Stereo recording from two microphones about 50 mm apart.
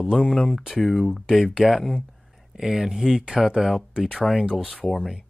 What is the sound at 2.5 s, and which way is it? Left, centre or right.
Speech, centre.